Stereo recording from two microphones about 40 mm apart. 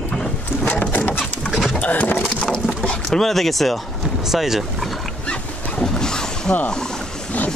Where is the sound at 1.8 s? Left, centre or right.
Left.